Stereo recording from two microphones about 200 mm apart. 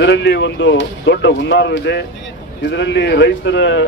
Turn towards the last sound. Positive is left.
turn(degrees=65)  # may be behind; listen again after turning